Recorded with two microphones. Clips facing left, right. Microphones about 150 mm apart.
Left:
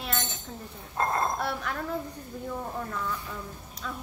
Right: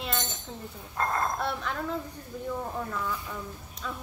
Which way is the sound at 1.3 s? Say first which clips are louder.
Even; 5° left (ahead or behind).